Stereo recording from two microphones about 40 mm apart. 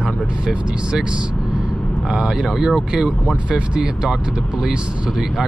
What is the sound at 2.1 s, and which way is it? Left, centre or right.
Speech, centre.